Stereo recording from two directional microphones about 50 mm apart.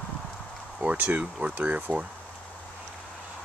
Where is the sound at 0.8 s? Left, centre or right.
Right.